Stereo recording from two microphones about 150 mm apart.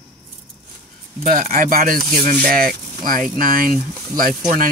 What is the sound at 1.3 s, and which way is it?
Speech, 65° right (ahead or behind).